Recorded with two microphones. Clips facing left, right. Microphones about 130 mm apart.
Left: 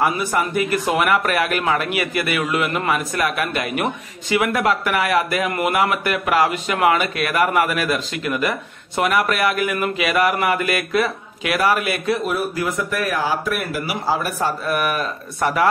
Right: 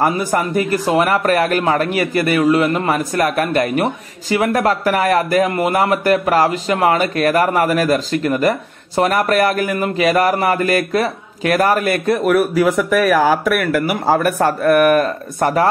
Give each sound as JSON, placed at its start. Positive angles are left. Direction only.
{"t": 0.0, "sound": "speech", "side_deg": -40}
{"t": 12.3, "sound": "speech", "side_deg": -75}